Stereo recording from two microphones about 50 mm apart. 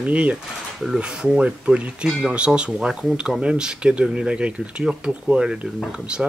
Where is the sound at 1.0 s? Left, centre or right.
Centre.